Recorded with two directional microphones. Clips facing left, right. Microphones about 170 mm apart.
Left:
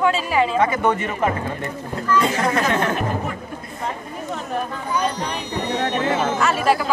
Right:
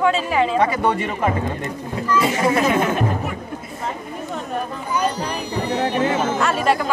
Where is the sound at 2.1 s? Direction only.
10° right (ahead or behind).